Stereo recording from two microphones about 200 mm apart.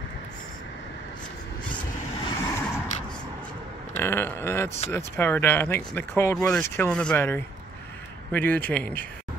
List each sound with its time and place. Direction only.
2.2 s vehicle: 20° left (ahead or behind)
3.9 s speech: 10° left (ahead or behind)
4.6 s speech: 30° left (ahead or behind)
4.9 s speech: 10° left (ahead or behind)